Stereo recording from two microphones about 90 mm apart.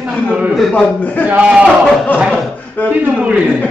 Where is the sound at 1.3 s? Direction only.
15° right (ahead or behind).